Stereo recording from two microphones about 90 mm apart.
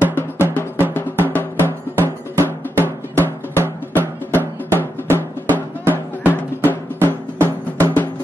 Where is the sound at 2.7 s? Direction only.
25° left (ahead or behind).